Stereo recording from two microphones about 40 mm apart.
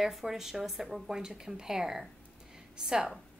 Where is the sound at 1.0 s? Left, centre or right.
Centre.